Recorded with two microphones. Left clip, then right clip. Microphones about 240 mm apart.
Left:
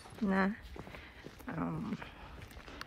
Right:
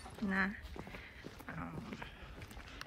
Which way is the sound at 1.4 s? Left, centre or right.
Centre.